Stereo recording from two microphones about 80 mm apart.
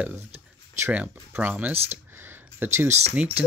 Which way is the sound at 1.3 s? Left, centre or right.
Centre.